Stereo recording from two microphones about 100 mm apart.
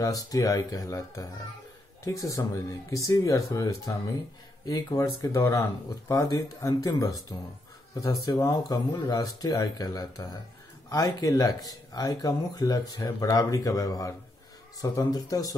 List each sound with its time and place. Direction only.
0.0 s speech: 35° left (ahead or behind)